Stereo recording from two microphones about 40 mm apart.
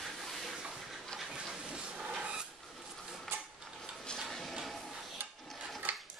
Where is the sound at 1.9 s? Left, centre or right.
Right.